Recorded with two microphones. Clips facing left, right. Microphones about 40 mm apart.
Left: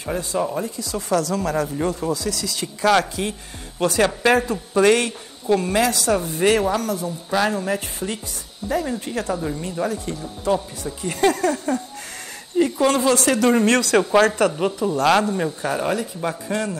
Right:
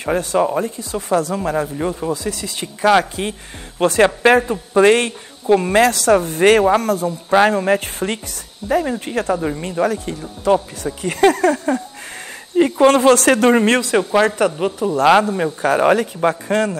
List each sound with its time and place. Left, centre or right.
0.0 s speech: right
0.4 s speech: right
2.2 s speech: right
3.8 s speech: right
14.2 s speech: centre
15.6 s speech: right